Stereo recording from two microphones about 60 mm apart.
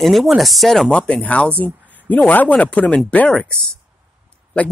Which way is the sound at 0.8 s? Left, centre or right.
Centre.